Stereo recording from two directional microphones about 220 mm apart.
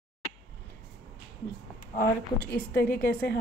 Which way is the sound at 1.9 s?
40° left (ahead or behind).